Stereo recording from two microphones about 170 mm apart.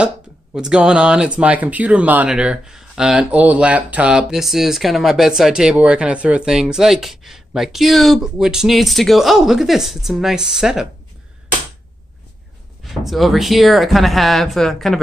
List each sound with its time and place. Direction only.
0.6 s speech: 5° right (ahead or behind)
12.8 s speech: centre (ahead or behind)